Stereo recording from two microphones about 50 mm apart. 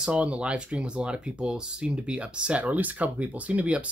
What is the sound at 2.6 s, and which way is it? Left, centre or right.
Speech, right.